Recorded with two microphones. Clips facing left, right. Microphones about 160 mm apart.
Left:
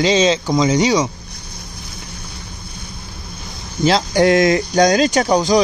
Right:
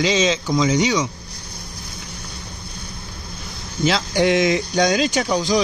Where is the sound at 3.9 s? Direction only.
40° left (ahead or behind).